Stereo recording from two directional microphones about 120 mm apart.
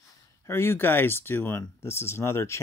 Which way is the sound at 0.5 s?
20° left (ahead or behind).